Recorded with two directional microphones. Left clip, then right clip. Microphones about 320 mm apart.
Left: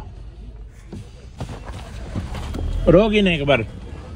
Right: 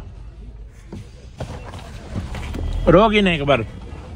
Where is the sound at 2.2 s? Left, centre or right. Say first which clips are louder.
Even; centre.